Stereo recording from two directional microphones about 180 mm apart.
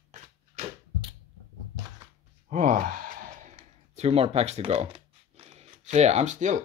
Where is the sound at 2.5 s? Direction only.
45° right (ahead or behind).